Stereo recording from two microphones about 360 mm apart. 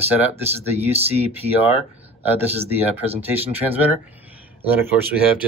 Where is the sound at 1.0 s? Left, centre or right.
Centre.